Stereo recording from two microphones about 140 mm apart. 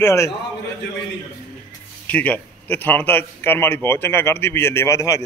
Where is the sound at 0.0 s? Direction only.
20° left (ahead or behind).